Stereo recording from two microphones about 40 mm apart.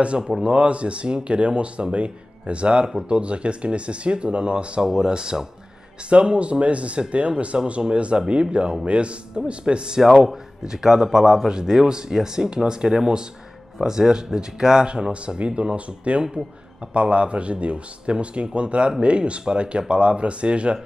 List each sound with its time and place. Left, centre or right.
0.0 s speech: right
4.8 s speech: centre
10.6 s speech: centre; by 20.8 s right